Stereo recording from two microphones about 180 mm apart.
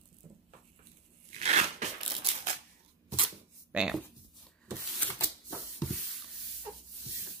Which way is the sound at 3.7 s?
5° right (ahead or behind).